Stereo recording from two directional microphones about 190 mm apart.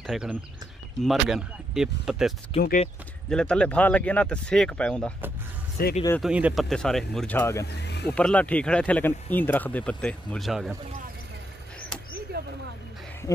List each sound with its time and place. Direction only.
0.0 s speech: 5° right (ahead or behind)
2.5 s speech: 30° left (ahead or behind)
3.3 s speech: 5° left (ahead or behind)
5.8 s speech: 50° left (ahead or behind)
6.2 s speech: 5° right (ahead or behind); by 7.6 s 10° left (ahead or behind)
7.6 s speech: 60° left (ahead or behind)
8.1 s speech: 5° left (ahead or behind)
12.3 s vehicle: 55° right (ahead or behind)